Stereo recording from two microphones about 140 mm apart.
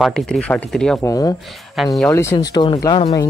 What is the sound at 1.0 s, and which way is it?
Speech, 25° left (ahead or behind).